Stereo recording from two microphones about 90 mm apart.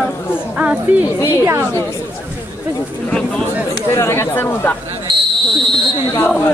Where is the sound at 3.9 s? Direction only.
30° left (ahead or behind).